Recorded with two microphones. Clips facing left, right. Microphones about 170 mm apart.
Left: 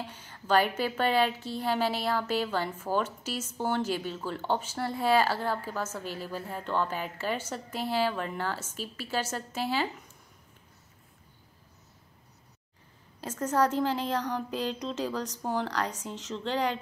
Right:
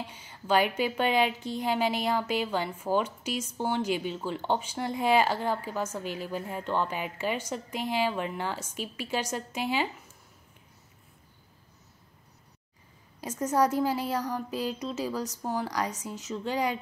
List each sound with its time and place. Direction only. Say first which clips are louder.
0.0 s a woman's voice: even; 10° right (ahead or behind)
13.2 s a woman's voice: right 1 dB; 10° right (ahead or behind)